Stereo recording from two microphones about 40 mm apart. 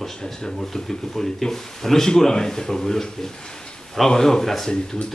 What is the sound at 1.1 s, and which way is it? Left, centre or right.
Speech, centre.